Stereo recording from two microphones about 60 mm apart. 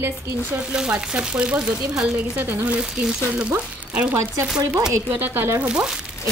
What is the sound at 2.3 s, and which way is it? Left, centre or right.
Speech, right.